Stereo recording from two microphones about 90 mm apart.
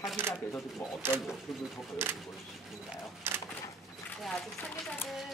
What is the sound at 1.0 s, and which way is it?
Speech, 25° right (ahead or behind).